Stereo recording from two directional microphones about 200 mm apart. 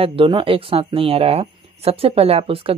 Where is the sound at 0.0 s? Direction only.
25° right (ahead or behind).